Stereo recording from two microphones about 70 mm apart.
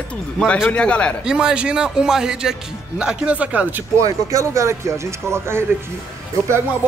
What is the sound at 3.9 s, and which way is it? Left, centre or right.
Speech, right.